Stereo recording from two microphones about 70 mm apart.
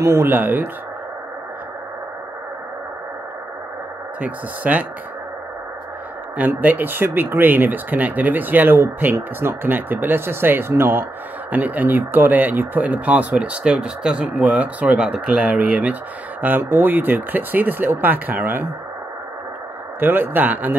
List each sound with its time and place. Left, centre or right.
0.0 s speech: right
4.2 s speech: right
6.3 s speech: right
20.0 s speech: right